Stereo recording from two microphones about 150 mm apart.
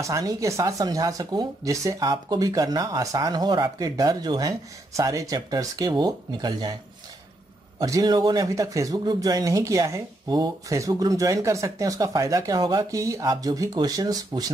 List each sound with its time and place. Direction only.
0.0 s speech: 20° right (ahead or behind)
7.8 s speech: 25° right (ahead or behind)